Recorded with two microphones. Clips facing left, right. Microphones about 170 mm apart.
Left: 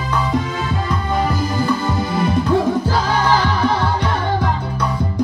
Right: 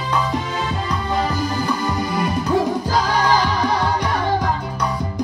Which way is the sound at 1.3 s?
15° right (ahead or behind).